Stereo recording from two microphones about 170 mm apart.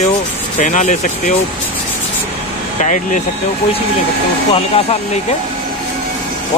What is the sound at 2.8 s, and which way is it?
Speech, 45° left (ahead or behind).